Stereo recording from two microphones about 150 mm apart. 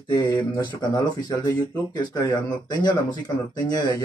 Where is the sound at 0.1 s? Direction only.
25° left (ahead or behind).